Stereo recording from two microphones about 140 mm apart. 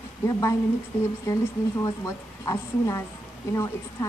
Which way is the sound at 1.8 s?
20° left (ahead or behind).